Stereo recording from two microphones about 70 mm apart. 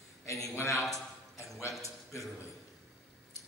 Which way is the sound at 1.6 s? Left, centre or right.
Left.